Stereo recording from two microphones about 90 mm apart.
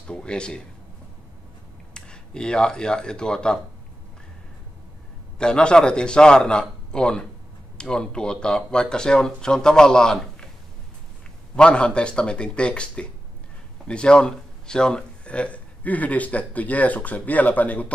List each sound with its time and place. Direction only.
0.0 s a sound: 10° left (ahead or behind)
2.0 s speech: 10° left (ahead or behind)
5.4 s speech: 10° left (ahead or behind)
11.5 s speech: 10° left (ahead or behind)